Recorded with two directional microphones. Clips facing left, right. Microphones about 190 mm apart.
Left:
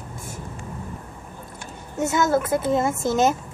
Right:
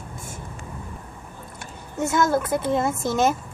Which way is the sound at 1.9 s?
5° left (ahead or behind).